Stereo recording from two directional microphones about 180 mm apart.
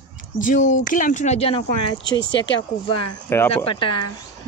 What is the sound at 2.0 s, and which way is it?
Speech, 25° left (ahead or behind).